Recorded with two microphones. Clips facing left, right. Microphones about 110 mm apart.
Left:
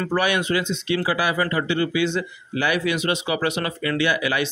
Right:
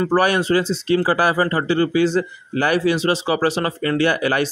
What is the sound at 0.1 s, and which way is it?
Speech, 35° right (ahead or behind).